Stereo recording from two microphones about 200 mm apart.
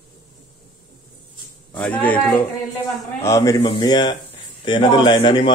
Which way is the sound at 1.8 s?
5° left (ahead or behind).